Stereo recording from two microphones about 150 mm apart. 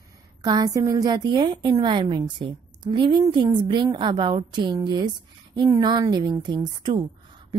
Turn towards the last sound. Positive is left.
turn(degrees=-30)  # may be behind; listen again after turning